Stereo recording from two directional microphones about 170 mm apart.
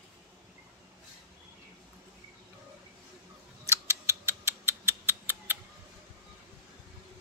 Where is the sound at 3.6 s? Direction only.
15° right (ahead or behind).